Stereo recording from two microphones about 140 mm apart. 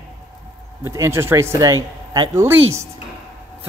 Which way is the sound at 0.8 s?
20° right (ahead or behind).